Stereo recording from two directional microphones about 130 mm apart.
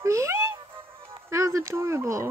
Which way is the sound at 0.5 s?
40° right (ahead or behind).